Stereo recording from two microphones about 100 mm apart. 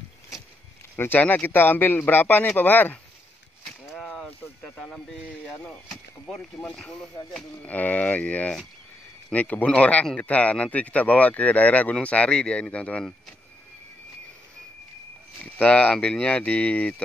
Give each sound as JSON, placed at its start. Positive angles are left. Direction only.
{"t": 0.9, "sound": "speech", "side_deg": 20}
{"t": 4.0, "sound": "a sound", "side_deg": 10}
{"t": 4.7, "sound": "speech", "side_deg": 10}
{"t": 15.4, "sound": "speech", "side_deg": 15}